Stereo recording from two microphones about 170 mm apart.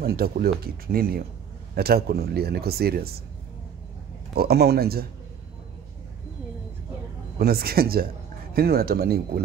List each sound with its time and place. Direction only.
0.0 s speech: 65° right (ahead or behind)
4.4 s speech: 70° right (ahead or behind)
7.3 s speech: 65° right (ahead or behind)